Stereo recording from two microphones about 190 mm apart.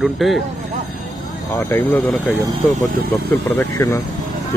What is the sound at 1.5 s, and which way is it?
Speech, 10° left (ahead or behind).